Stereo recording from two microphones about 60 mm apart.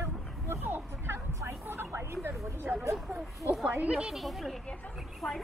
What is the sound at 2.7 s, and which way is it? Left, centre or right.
Speech, right.